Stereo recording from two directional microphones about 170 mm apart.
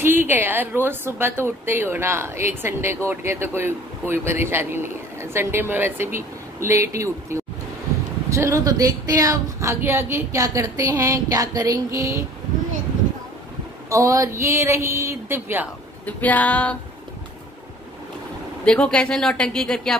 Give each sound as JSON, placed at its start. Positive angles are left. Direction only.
{"t": 0.0, "sound": "a woman's voice", "side_deg": -15}
{"t": 8.3, "sound": "a woman's voice", "side_deg": -15}
{"t": 13.8, "sound": "a woman's voice", "side_deg": -20}
{"t": 16.1, "sound": "a sound", "side_deg": 10}
{"t": 18.7, "sound": "speech", "side_deg": 5}